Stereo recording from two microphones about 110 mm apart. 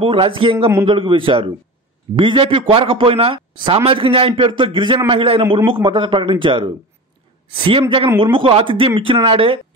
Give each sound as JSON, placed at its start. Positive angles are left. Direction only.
{"t": 0.0, "sound": "a man's voice", "side_deg": -55}